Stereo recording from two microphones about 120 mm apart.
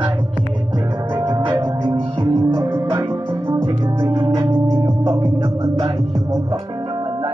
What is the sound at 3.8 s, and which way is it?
Music, 35° right (ahead or behind).